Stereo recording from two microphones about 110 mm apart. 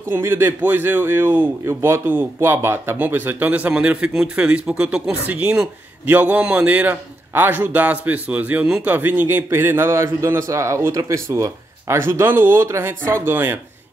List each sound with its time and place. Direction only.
0.1 s a man's voice: 20° right (ahead or behind)